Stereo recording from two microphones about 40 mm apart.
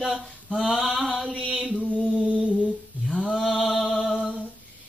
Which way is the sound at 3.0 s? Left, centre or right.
Centre.